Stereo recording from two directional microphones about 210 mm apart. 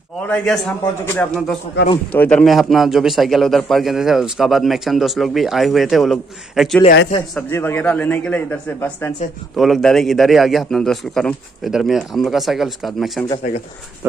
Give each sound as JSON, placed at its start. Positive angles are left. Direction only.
{"t": 0.2, "sound": "a man's voice", "side_deg": 5}
{"t": 7.3, "sound": "a man's voice", "side_deg": 10}